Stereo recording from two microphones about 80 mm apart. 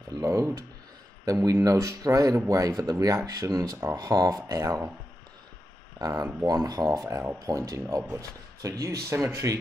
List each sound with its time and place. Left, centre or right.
0.1 s a sound: right
1.2 s speech: right
5.9 s speech: right
7.1 s speech: right